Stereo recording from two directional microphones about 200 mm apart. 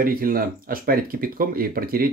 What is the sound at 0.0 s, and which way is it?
Speech, 45° right (ahead or behind).